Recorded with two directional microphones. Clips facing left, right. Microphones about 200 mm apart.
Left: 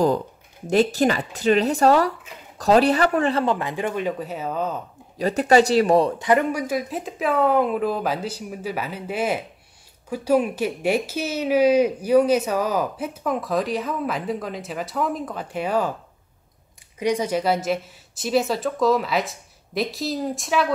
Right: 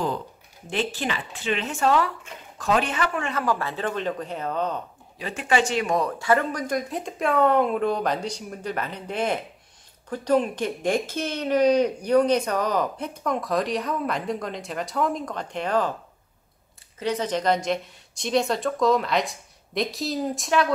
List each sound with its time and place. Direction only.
0.7 s speech: 40° left (ahead or behind)
3.5 s speech: 15° left (ahead or behind)
5.2 s speech: 40° left (ahead or behind); by 6.6 s 20° left (ahead or behind)
6.7 s a woman's voice: 5° left (ahead or behind)
17.0 s a woman's voice: 10° left (ahead or behind)